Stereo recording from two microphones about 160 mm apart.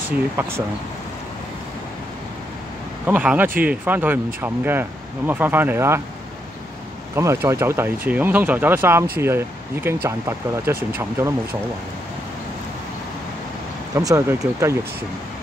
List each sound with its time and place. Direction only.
0.4 s speech: 15° right (ahead or behind)
3.1 s speech: 10° right (ahead or behind)
7.2 s speech: 15° right (ahead or behind)
10.0 s speech: 15° right (ahead or behind)
13.9 s speech: 20° right (ahead or behind)